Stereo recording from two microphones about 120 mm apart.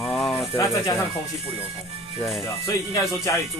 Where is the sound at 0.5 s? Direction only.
25° left (ahead or behind).